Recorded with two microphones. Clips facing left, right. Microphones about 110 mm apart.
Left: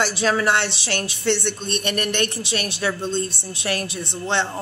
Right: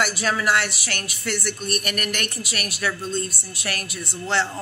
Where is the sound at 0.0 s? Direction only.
30° left (ahead or behind).